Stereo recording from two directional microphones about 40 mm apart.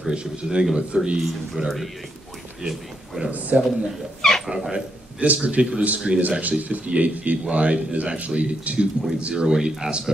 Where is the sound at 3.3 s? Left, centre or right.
Right.